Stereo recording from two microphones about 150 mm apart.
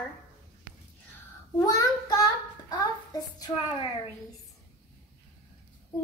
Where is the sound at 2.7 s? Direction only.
25° left (ahead or behind).